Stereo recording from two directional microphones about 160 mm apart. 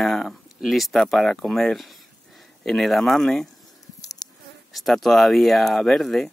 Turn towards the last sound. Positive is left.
turn(degrees=0)  # may be behind; listen again after turning